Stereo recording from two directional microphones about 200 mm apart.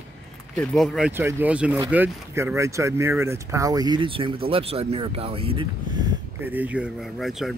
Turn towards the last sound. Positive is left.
turn(degrees=0)  # may be behind; listen again after turning